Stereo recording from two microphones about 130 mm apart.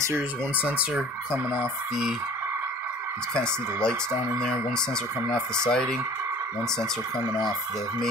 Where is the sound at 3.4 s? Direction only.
20° right (ahead or behind).